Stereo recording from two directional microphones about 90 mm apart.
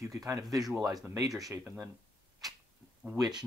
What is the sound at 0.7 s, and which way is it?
Speech, 40° right (ahead or behind).